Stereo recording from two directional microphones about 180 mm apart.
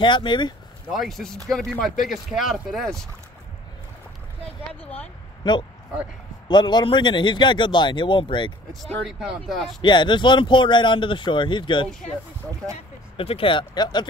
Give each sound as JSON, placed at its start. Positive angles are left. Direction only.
{"t": 0.0, "sound": "speech", "side_deg": 25}
{"t": 0.9, "sound": "speech", "side_deg": 0}
{"t": 4.8, "sound": "speech", "side_deg": 5}
{"t": 5.4, "sound": "speech", "side_deg": 25}
{"t": 8.8, "sound": "speech", "side_deg": 0}
{"t": 9.8, "sound": "speech", "side_deg": 25}
{"t": 13.2, "sound": "speech", "side_deg": 30}